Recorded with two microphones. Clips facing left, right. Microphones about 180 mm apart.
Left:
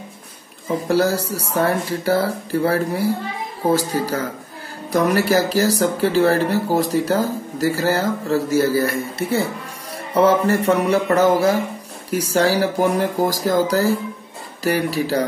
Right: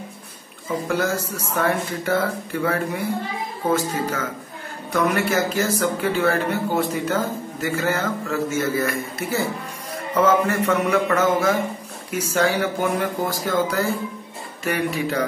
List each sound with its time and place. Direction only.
0.8 s speech: 35° left (ahead or behind)